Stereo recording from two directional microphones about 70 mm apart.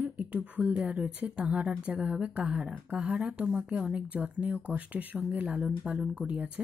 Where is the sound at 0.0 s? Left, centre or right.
Right.